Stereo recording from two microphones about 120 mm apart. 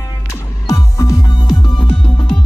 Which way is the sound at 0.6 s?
30° left (ahead or behind).